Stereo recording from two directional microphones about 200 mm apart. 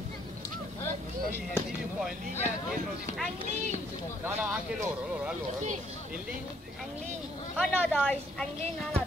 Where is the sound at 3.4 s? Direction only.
35° right (ahead or behind).